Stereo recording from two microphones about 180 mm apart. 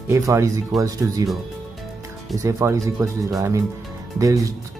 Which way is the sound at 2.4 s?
15° right (ahead or behind).